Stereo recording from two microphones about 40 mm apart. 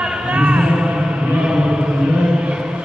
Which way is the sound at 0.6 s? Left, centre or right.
Right.